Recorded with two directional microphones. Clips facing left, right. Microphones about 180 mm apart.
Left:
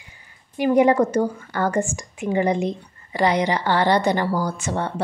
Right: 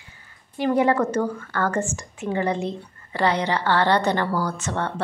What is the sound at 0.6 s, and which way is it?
Speech, 15° left (ahead or behind).